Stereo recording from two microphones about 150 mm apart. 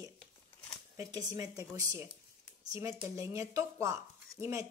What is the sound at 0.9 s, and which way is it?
A woman's voice, 25° right (ahead or behind).